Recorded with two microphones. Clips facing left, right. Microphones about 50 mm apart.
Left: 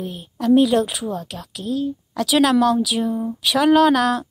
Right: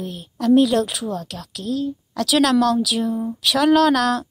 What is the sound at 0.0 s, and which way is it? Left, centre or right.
Speech, centre.